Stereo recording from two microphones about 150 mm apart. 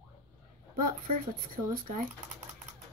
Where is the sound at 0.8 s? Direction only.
70° right (ahead or behind).